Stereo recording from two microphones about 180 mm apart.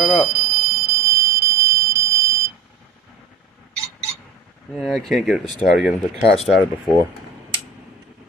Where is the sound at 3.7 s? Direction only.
35° right (ahead or behind).